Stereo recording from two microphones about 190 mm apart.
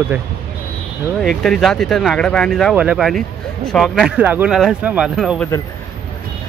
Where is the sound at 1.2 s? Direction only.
5° left (ahead or behind).